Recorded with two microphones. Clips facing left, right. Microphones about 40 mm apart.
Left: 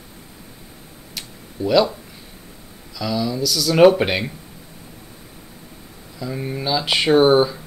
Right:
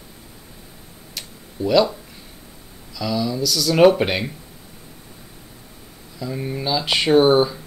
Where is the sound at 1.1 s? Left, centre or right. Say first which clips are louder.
Left 1 dB; centre.